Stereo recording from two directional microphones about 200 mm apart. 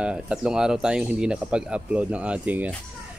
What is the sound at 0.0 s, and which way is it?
Speech, 5° right (ahead or behind).